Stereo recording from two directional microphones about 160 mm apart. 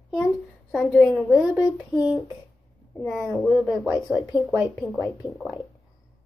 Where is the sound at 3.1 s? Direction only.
5° left (ahead or behind).